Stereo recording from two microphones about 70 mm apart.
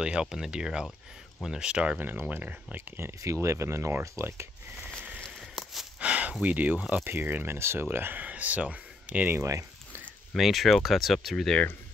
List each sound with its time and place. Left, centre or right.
0.0 s speech: centre
3.2 s speech: right
5.6 s gasp: centre
5.9 s a sound: centre
6.4 s speech: right
9.4 s speech: right
10.3 s speech: centre